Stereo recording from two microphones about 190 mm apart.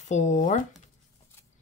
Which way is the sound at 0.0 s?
40° left (ahead or behind).